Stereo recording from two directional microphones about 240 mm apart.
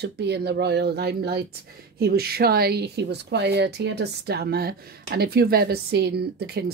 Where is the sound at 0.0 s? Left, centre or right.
Right.